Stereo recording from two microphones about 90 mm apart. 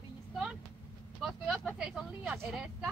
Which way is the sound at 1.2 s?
Centre (ahead or behind).